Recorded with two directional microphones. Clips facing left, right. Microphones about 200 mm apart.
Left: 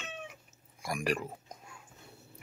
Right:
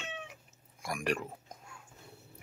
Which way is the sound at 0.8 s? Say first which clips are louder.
Left 1 dB; 5° left (ahead or behind).